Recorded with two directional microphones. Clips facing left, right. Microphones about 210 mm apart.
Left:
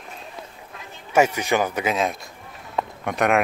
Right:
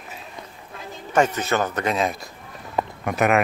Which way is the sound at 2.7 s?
5° right (ahead or behind).